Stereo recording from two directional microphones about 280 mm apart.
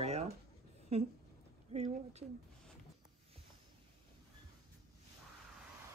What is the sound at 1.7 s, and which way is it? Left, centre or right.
Speech, right.